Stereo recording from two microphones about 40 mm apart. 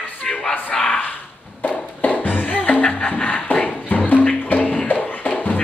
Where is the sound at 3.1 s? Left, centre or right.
Left.